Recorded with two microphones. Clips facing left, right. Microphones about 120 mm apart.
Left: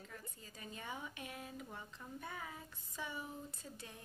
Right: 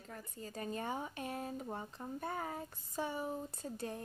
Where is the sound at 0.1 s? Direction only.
45° right (ahead or behind).